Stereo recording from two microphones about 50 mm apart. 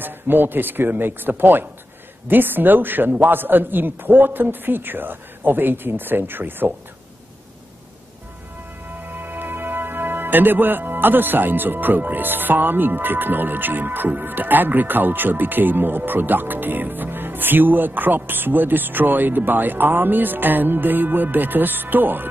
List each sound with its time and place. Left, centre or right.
0.0 s a man's voice: right
9.0 s a man's voice: right